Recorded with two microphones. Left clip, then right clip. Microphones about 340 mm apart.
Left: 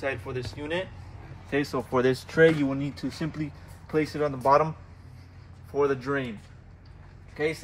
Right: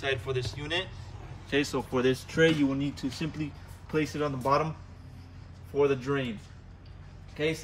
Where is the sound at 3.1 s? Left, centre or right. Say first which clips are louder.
Left 2 dB; centre.